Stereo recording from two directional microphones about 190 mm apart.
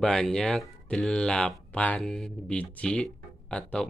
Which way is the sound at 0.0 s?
5° left (ahead or behind).